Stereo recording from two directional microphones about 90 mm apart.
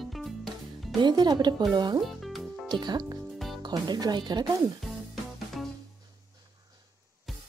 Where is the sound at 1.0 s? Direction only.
50° right (ahead or behind).